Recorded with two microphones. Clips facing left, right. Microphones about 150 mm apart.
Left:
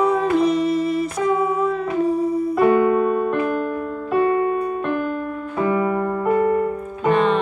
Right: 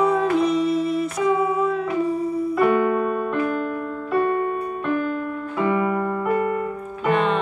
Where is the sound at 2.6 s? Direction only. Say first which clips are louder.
Left 3 dB; 5° left (ahead or behind).